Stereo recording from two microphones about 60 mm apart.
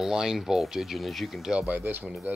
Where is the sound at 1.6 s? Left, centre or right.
Right.